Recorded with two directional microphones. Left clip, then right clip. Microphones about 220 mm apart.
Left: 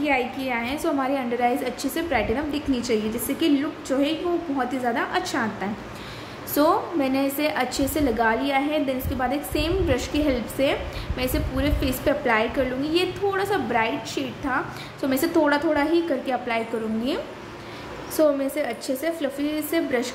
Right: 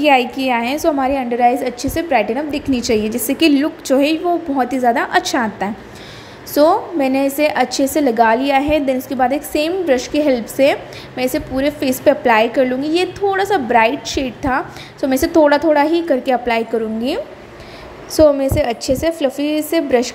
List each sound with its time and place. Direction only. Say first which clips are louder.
0.0 s a woman's voice: right 10 dB; 35° right (ahead or behind)